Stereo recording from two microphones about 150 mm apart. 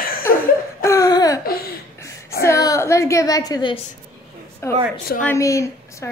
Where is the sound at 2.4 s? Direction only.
20° left (ahead or behind).